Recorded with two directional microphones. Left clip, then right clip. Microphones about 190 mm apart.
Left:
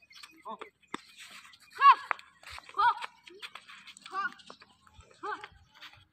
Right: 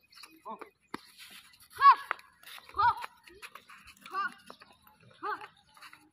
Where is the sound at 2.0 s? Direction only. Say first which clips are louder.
Left 2 dB; 60° right (ahead or behind).